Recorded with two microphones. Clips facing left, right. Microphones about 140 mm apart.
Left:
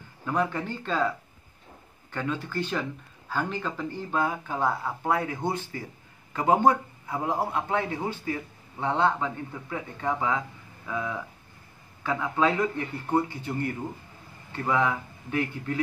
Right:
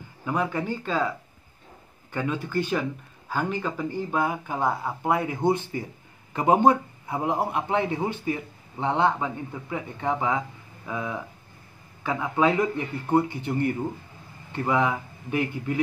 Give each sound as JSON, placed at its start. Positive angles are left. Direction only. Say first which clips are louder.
{"t": 0.2, "sound": "speech", "louder": "right 1 dB", "side_deg": -10}
{"t": 2.1, "sound": "a man's voice", "louder": "right 3 dB", "side_deg": -10}